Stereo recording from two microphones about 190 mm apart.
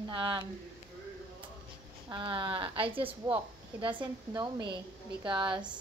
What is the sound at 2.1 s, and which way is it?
A woman's voice, 25° right (ahead or behind).